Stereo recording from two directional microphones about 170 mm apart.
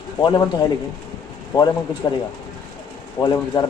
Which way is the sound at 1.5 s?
20° left (ahead or behind).